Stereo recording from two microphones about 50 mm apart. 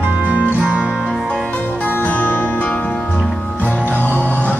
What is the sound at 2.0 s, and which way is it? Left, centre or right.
Music, left.